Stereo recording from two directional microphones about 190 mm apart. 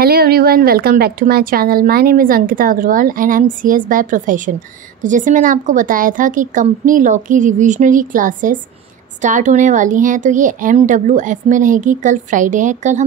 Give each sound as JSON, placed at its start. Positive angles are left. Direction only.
{"t": 0.0, "sound": "a woman's voice", "side_deg": -55}